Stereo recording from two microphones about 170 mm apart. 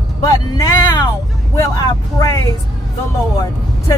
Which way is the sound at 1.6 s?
15° left (ahead or behind).